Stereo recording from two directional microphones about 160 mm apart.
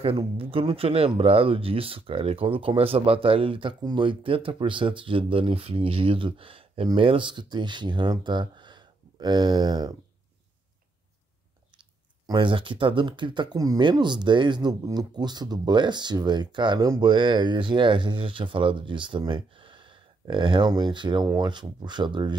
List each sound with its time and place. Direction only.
0.4 s speech: 35° right (ahead or behind)
12.3 s speech: 30° right (ahead or behind)